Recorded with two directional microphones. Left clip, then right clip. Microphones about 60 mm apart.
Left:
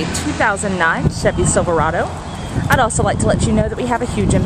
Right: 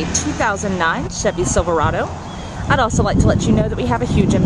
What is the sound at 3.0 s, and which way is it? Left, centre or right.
Speech, right.